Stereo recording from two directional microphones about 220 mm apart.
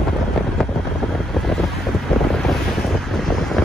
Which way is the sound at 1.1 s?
Centre (ahead or behind).